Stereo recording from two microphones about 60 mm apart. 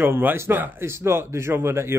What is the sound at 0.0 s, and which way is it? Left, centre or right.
A man's voice, right.